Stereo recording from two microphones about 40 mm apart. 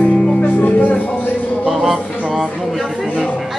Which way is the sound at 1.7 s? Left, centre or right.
Centre.